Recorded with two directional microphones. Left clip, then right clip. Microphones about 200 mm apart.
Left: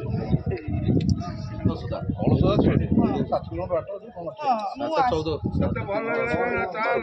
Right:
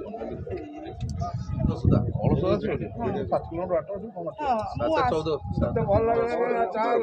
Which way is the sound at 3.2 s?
5° left (ahead or behind).